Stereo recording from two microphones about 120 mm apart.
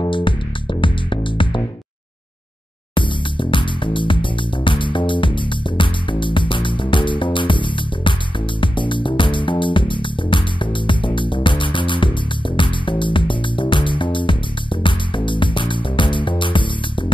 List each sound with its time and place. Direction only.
0.0 s music: 45° left (ahead or behind)
2.9 s music: 45° left (ahead or behind)